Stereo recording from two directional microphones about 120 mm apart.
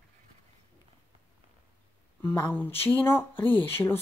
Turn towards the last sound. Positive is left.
turn(degrees=20)  # may be behind; listen again after turning